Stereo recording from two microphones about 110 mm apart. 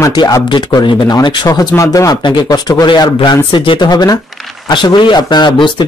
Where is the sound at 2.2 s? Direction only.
45° left (ahead or behind).